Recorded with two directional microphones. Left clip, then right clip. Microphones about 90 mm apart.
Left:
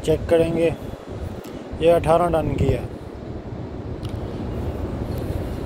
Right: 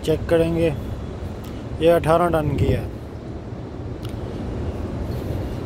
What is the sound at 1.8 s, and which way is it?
Speech, 75° right (ahead or behind).